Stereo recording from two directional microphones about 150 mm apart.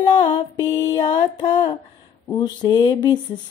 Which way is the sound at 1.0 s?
30° left (ahead or behind).